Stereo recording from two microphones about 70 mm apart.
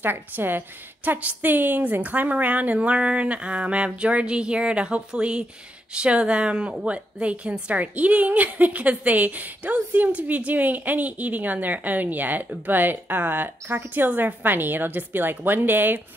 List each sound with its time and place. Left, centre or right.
0.0 s a woman's voice: right